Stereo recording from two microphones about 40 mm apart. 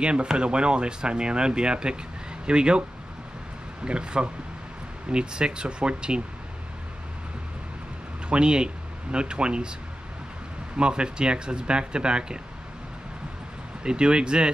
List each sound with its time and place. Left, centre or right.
0.0 s speech: right
3.8 s speech: right
8.3 s speech: right
10.8 s speech: right
13.8 s speech: right